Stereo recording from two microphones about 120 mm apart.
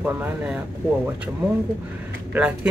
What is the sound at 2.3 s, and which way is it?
Speech, 15° right (ahead or behind).